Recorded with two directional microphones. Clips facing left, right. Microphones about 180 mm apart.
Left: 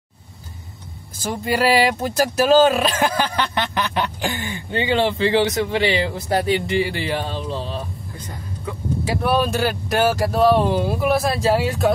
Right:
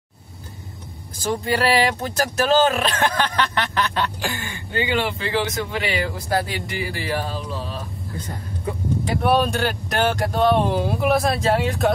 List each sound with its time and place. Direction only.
1.2 s speech: 10° left (ahead or behind)
4.7 s a man's voice: 30° left (ahead or behind)
9.0 s speech: centre (ahead or behind)